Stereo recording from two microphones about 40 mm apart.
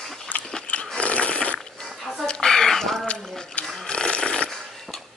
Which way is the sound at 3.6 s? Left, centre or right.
Centre.